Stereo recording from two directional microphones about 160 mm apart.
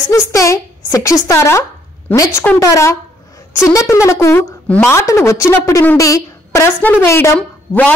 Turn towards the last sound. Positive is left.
turn(degrees=10)  # may be behind; listen again after turning